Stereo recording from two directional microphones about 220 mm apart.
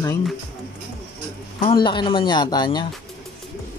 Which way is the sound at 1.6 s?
25° left (ahead or behind).